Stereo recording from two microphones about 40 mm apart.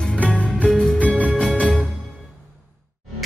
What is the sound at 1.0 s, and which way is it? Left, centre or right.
Music, left.